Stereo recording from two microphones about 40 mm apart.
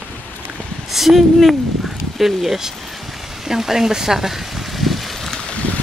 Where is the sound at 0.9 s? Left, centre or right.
Centre.